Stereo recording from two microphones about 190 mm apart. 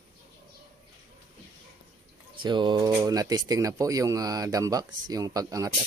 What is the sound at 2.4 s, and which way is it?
Speech, 25° right (ahead or behind).